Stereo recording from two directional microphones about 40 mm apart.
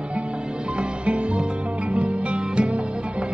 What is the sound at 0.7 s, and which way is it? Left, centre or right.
Music, right.